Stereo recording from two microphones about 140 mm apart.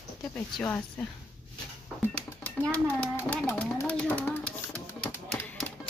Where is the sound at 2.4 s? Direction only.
10° left (ahead or behind).